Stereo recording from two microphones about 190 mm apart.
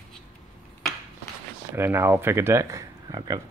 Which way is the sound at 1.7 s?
15° right (ahead or behind).